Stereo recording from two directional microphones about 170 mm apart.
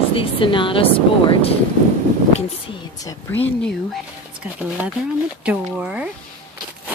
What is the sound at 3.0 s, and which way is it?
Speech, 10° left (ahead or behind).